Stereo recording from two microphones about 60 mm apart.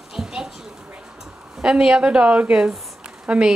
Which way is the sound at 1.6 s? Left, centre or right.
Centre.